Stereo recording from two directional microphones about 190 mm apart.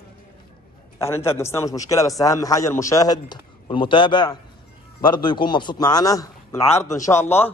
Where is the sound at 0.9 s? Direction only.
15° left (ahead or behind).